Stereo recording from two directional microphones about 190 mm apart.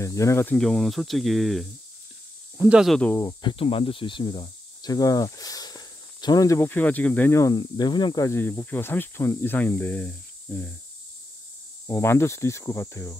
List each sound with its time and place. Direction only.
0.0 s speech: 15° left (ahead or behind)
3.2 s speech: 20° left (ahead or behind)
3.5 s speech: 30° left (ahead or behind); by 10.7 s 5° left (ahead or behind)
11.9 s speech: 15° left (ahead or behind)